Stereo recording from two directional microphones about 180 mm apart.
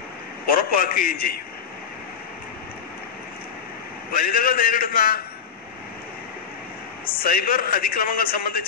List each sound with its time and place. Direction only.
0.5 s a man's voice: 55° left (ahead or behind)
4.1 s a man's voice: 55° left (ahead or behind)
7.2 s a man's voice: 55° left (ahead or behind)